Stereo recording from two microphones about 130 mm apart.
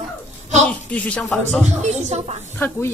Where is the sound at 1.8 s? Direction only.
60° right (ahead or behind).